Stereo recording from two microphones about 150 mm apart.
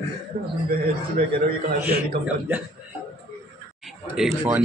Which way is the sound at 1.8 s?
90° right.